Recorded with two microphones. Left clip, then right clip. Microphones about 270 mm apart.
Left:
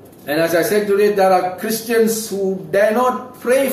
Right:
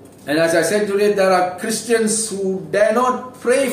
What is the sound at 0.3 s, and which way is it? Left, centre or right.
A man's voice, centre.